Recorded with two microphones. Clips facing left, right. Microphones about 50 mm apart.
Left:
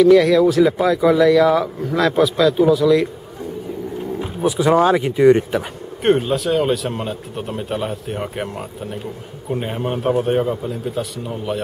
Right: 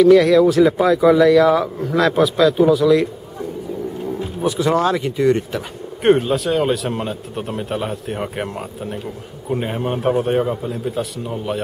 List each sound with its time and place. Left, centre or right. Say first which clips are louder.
0.0 s speech: right 1 dB; centre
4.4 s speech: left 3 dB; centre
6.0 s speech: right 1 dB; centre